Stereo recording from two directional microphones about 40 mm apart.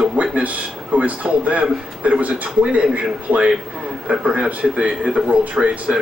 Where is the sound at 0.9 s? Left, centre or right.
Right.